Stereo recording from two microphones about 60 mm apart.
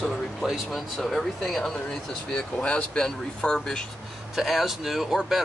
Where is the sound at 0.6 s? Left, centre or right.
Centre.